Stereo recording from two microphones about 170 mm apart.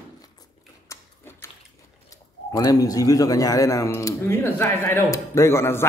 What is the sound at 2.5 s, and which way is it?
A man's voice, 20° left (ahead or behind).